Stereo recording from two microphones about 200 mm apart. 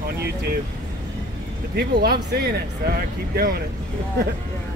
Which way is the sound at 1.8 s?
50° right (ahead or behind).